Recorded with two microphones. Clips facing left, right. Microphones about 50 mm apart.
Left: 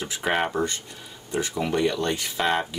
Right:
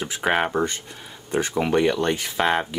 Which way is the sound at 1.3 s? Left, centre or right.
Right.